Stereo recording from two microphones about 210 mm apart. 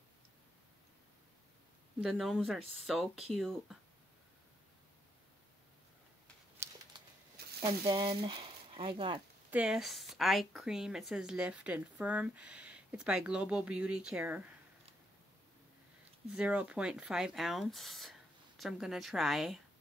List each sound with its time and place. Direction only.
2.0 s speech: centre (ahead or behind)
6.6 s a sound: 10° right (ahead or behind)
7.6 s speech: 20° right (ahead or behind)
9.5 s speech: 5° right (ahead or behind)
16.3 s speech: 5° right (ahead or behind)